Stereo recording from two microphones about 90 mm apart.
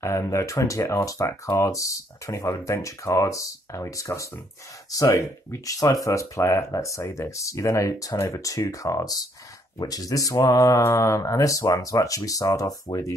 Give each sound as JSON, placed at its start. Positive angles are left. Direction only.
{"t": 0.0, "sound": "speech", "side_deg": 30}